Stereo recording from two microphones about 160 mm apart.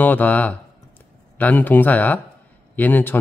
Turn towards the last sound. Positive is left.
turn(degrees=10)  # may be behind; listen again after turning